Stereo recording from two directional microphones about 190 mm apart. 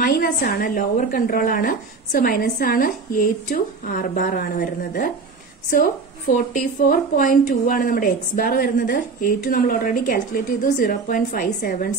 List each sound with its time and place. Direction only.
0.0 s a woman's voice: 55° left (ahead or behind)